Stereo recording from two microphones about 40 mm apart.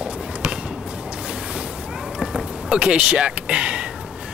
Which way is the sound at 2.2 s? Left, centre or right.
Right.